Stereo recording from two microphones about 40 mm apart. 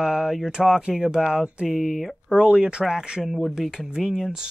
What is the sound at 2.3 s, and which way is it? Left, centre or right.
Speech, centre.